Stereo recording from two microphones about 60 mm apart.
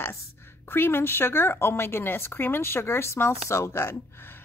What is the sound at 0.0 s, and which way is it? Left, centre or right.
A woman's voice, left.